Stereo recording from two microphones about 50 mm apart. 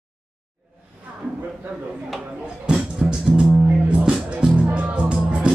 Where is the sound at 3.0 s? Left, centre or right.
Centre.